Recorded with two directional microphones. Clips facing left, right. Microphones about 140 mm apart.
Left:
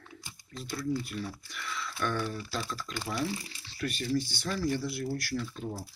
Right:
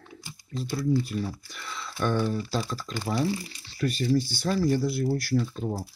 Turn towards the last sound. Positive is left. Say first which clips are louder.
# right 8 dB
turn(degrees=-35)  # may be behind; listen again after turning